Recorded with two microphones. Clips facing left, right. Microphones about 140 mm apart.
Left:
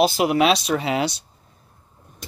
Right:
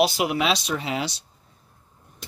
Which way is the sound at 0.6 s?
75° left (ahead or behind).